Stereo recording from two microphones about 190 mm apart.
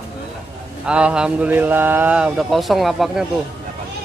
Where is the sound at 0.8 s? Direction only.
5° right (ahead or behind).